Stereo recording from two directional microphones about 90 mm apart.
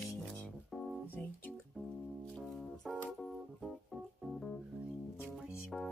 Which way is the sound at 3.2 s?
5° left (ahead or behind).